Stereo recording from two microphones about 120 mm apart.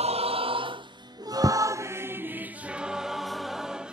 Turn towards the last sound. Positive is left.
turn(degrees=-5)  # may be behind; listen again after turning